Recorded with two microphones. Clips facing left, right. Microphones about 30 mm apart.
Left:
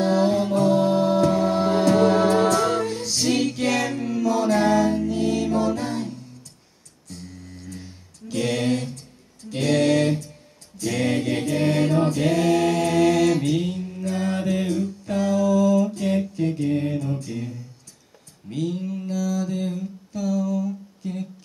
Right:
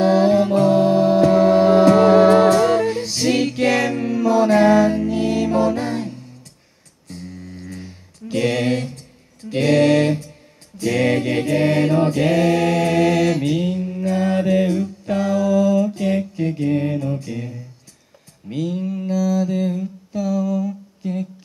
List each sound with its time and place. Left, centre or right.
0.0 s music: right
7.6 s mantra: right